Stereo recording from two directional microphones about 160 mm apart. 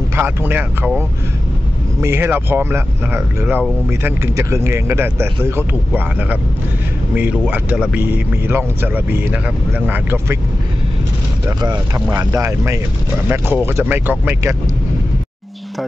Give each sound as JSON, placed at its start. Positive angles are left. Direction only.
{"t": 0.1, "sound": "speech", "side_deg": -15}
{"t": 7.2, "sound": "speech", "side_deg": -10}
{"t": 11.6, "sound": "speech", "side_deg": -25}